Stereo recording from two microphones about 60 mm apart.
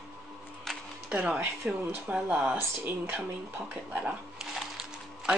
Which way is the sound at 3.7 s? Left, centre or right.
Centre.